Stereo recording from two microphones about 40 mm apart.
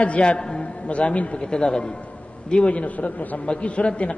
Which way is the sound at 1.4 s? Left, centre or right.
Centre.